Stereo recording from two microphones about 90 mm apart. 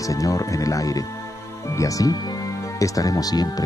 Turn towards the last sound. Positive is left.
turn(degrees=45)  # may be behind; listen again after turning